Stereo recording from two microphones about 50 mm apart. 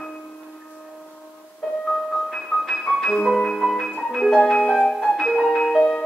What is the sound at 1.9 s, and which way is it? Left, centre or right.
Music, centre.